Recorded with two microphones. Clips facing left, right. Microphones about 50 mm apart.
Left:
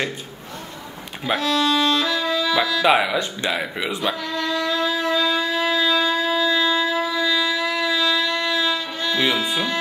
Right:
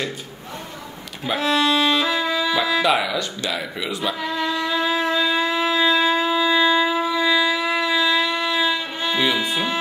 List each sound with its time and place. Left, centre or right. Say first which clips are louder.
1.4 s music: right 2 dB; centre
2.8 s speech: left 2 dB; centre
4.2 s music: right 1 dB; centre
5.5 s shofar: right 1 dB; centre
9.3 s speech: even; centre